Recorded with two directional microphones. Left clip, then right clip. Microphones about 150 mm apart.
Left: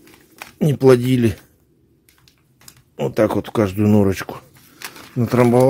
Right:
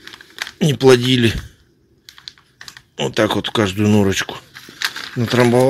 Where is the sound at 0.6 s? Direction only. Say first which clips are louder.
Right 1 dB; 10° left (ahead or behind).